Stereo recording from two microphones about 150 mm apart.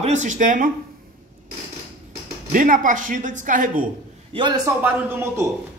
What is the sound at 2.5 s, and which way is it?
Speech, 65° right (ahead or behind).